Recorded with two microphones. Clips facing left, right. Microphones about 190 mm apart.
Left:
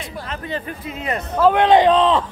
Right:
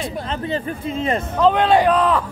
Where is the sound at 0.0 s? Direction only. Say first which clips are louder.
Right 5 dB; 30° right (ahead or behind).